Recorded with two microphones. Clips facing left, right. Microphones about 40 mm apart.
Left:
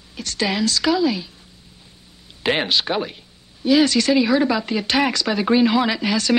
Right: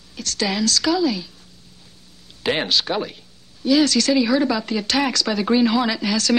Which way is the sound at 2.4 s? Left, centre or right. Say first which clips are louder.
Left 1 dB; centre.